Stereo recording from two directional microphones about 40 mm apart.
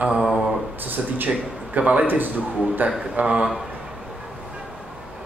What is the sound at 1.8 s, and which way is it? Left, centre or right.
Speech, right.